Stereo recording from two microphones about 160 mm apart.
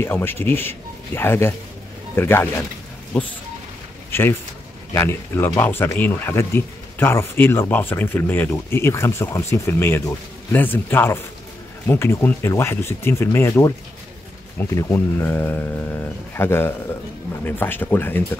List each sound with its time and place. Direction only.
0.0 s speech: 15° left (ahead or behind)
4.1 s speech: 15° left (ahead or behind)